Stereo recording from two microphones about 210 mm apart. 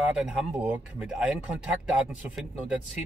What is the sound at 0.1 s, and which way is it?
Speech, 5° right (ahead or behind).